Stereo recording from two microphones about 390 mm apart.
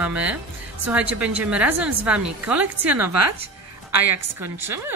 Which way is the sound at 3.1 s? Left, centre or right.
Right.